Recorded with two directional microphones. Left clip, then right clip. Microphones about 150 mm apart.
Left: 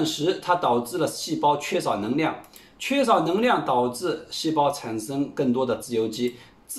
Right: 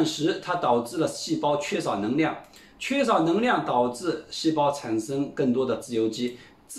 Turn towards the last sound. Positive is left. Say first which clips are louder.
# left 1 dB
turn(degrees=15)  # may be behind; listen again after turning